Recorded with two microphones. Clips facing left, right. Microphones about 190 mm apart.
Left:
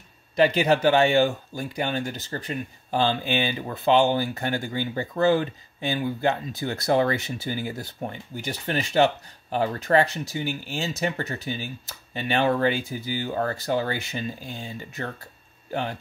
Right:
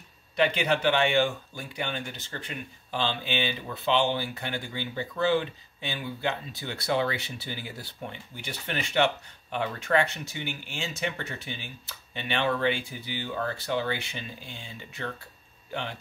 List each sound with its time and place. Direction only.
0.4 s speech: 40° left (ahead or behind)